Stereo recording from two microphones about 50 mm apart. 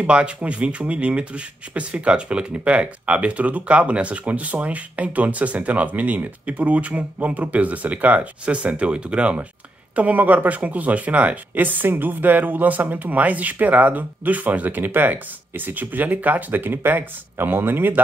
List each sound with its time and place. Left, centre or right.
0.0 s speech: right